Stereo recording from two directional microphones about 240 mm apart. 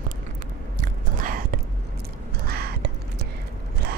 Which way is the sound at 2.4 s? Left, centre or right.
Right.